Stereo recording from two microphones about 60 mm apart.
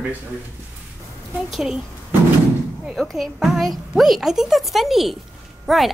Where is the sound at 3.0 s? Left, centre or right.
Centre.